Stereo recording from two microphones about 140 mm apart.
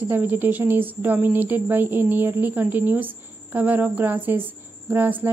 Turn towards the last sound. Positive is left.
turn(degrees=-15)  # may be behind; listen again after turning